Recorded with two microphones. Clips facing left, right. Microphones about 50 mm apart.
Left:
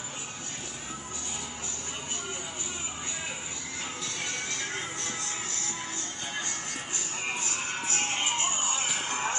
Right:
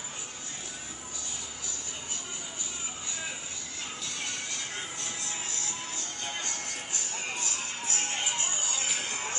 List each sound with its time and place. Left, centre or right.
7.2 s music: left